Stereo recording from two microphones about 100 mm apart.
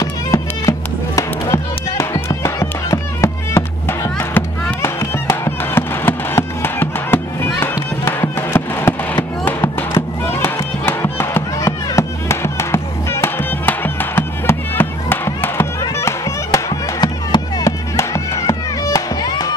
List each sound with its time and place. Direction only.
0.0 s music: 35° left (ahead or behind)
17.0 s music: 45° left (ahead or behind)
17.6 s music: 30° left (ahead or behind)